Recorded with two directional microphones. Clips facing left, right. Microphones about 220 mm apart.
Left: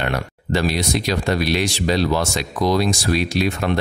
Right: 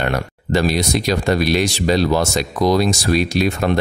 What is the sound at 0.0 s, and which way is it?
Speech, 45° right (ahead or behind).